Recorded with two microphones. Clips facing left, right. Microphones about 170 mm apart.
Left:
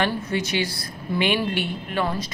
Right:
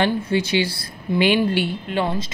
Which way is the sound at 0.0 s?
30° right (ahead or behind).